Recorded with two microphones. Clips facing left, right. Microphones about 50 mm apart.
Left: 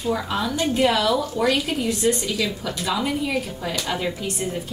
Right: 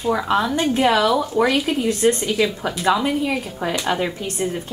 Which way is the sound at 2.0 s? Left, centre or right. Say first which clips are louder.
Right 6 dB; right.